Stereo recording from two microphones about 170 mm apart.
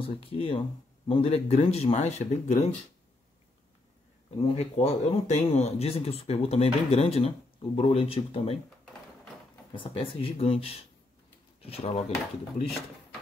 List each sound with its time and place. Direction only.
0.0 s speech: 35° left (ahead or behind)
4.4 s speech: 35° left (ahead or behind)
9.8 s speech: 30° left (ahead or behind)